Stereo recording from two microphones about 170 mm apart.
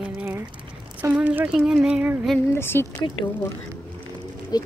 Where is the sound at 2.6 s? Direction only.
15° left (ahead or behind).